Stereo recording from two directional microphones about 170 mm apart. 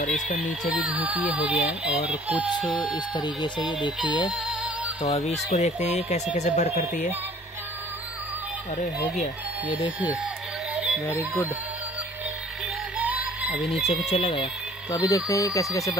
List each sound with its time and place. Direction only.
0.7 s speech: 10° right (ahead or behind)
2.9 s speech: 25° left (ahead or behind)
4.3 s music: 5° right (ahead or behind)
5.2 s speech: 40° left (ahead or behind)
9.8 s speech: 10° right (ahead or behind)
10.7 s a sound: 5° right (ahead or behind)
11.1 s speech: 15° left (ahead or behind)
12.9 s music: 5° right (ahead or behind)
14.1 s speech: 40° left (ahead or behind)
14.9 s speech: 20° left (ahead or behind)